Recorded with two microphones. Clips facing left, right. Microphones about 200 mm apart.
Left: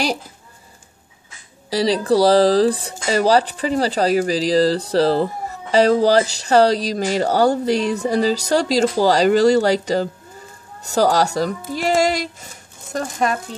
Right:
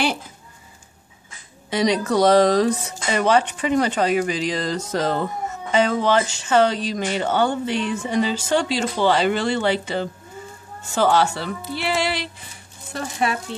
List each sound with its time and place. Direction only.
1.7 s speech: 35° left (ahead or behind)